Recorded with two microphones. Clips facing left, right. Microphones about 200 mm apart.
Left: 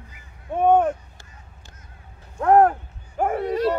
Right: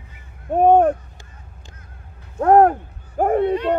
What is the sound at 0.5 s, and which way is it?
Speech, 40° right (ahead or behind).